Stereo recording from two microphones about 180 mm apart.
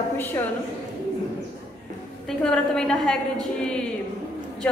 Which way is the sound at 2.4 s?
5° left (ahead or behind).